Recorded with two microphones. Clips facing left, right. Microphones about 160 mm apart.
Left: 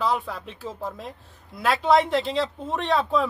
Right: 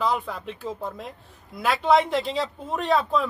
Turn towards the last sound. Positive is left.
turn(degrees=0)  # may be behind; listen again after turning